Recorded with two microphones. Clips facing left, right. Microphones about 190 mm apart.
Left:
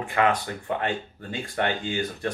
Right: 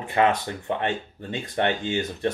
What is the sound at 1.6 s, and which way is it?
Speech, 25° right (ahead or behind).